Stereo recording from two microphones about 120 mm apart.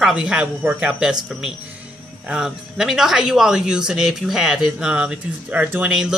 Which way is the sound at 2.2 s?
5° right (ahead or behind).